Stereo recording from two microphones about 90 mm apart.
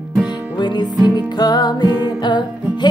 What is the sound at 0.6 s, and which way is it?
Music, 55° left (ahead or behind).